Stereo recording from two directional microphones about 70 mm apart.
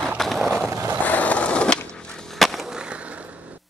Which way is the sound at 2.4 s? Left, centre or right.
Centre.